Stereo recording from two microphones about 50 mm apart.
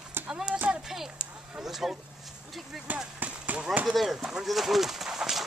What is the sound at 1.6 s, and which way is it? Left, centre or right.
Speech, centre.